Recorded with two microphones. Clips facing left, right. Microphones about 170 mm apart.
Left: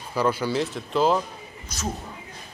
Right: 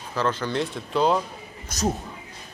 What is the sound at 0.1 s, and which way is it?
Speech, 10° left (ahead or behind).